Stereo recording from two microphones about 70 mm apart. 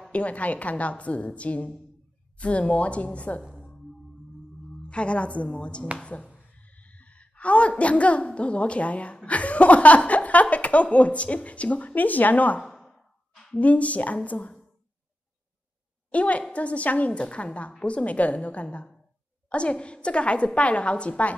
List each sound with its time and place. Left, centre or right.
0.1 s a woman's voice: centre
3.5 s music: centre
4.8 s a woman's voice: centre
12.5 s sigh: centre
13.6 s a woman's voice: left
16.1 s a woman's voice: centre